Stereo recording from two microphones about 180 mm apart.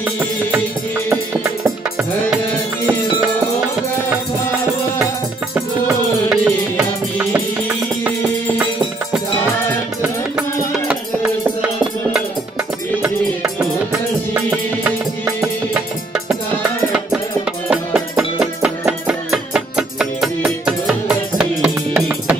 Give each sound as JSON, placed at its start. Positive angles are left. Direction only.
{"t": 1.1, "sound": "music", "side_deg": -15}
{"t": 5.5, "sound": "music", "side_deg": -15}
{"t": 13.0, "sound": "music", "side_deg": -5}
{"t": 18.4, "sound": "music", "side_deg": -5}